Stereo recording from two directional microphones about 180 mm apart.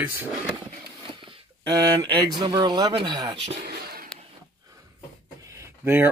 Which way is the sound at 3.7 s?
55° right (ahead or behind).